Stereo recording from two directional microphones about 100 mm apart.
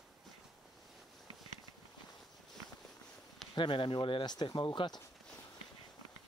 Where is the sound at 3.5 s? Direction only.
55° left (ahead or behind).